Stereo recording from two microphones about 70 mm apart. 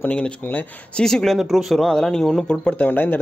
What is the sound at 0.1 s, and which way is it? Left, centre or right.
Speech, left.